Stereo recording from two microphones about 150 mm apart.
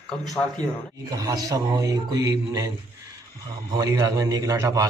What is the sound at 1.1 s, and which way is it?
Speech, 25° right (ahead or behind).